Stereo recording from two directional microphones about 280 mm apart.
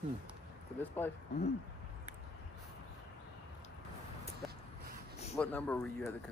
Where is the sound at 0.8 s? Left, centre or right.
Centre.